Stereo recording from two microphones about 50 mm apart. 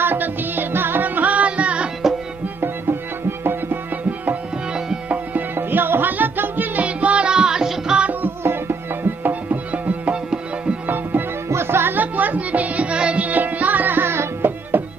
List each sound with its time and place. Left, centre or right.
0.0 s music: right
2.6 s music: right
5.1 s music: right
6.8 s music: right
9.2 s music: right
11.4 s music: right
12.0 s music: right